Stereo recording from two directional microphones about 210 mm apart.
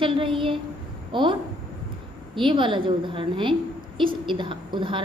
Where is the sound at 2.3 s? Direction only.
25° right (ahead or behind).